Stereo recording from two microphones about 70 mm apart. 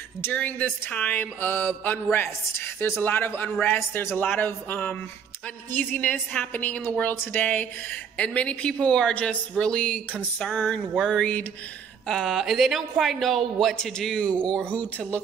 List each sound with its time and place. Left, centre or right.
0.3 s a woman's voice: left